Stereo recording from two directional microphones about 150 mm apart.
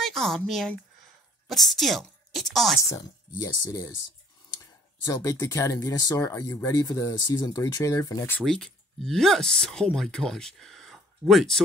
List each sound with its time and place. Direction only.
0.0 s speech: centre (ahead or behind)
2.9 s speech: 25° left (ahead or behind)
8.4 s speech: 5° left (ahead or behind)